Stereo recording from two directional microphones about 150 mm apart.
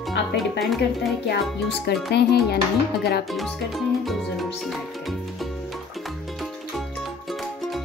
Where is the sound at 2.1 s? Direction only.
90° left.